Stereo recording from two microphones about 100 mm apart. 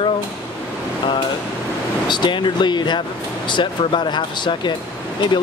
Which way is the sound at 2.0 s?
50° left (ahead or behind).